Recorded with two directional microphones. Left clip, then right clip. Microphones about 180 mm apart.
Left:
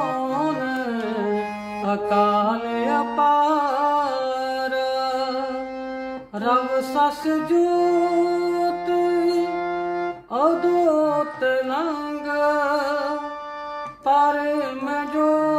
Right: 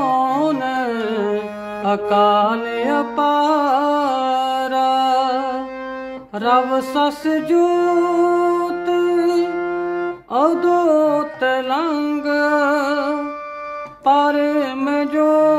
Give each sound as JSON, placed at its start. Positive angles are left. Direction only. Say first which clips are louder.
{"t": 0.0, "sound": "music", "louder": "right 6 dB", "side_deg": -40}
{"t": 8.8, "sound": "music", "louder": "right 6 dB", "side_deg": -40}
{"t": 9.5, "sound": "music", "louder": "right 3 dB", "side_deg": 0}
{"t": 10.3, "sound": "music", "louder": "right 4 dB", "side_deg": -40}